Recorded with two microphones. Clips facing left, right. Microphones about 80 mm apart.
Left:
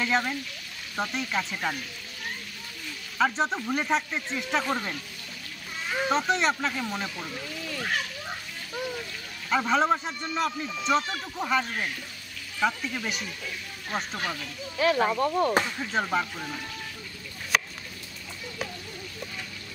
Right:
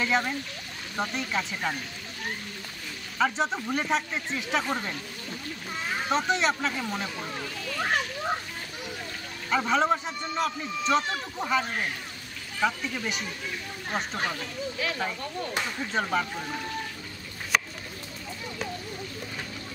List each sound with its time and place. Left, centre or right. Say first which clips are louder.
0.0 s a man's voice: even; centre
3.2 s a man's voice: left 1 dB; centre
6.0 s a man's voice: left 1 dB; centre
7.8 s children playing: right 5 dB; right
9.5 s a man's voice: left 1 dB; centre
12.6 s a man's voice: even; centre
14.1 s speech: right 2 dB; right
14.8 s speech: left 10 dB; left
15.9 s a man's voice: even; centre
17.5 s a sound: even; centre